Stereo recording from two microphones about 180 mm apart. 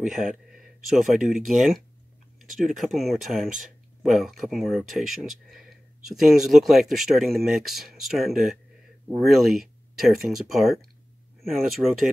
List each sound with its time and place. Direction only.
0.0 s speech: centre (ahead or behind)